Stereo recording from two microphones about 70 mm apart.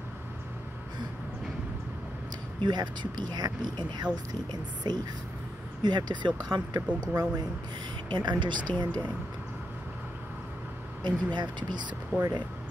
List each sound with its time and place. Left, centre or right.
2.6 s speech: right
4.3 s speech: right
5.8 s speech: right
7.0 s speech: right
8.1 s speech: right
11.3 s speech: right
12.1 s speech: right